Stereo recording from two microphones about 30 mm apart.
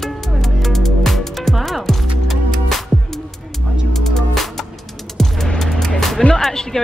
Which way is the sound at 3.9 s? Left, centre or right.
Centre.